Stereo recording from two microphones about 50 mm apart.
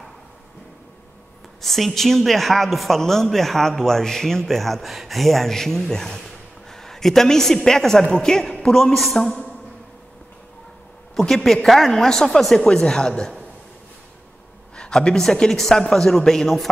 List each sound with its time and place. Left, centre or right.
1.6 s a man's voice: centre
11.3 s a woman's voice: centre
12.6 s a woman's voice: centre
14.8 s a woman's voice: centre